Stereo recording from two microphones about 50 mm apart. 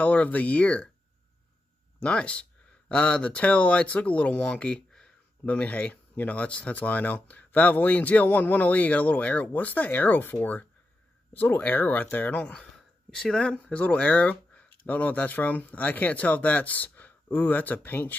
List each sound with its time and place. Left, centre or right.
0.0 s speech: left
2.0 s speech: left
13.1 s speech: centre
13.7 s speech: left